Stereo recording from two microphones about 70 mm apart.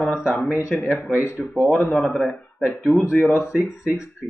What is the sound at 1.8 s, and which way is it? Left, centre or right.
A man's voice, centre.